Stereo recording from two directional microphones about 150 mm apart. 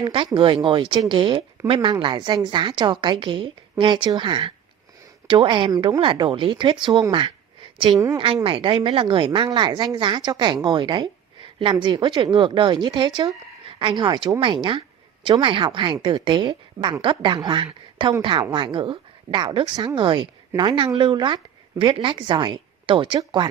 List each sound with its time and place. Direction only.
0.0 s a woman's voice: 30° right (ahead or behind)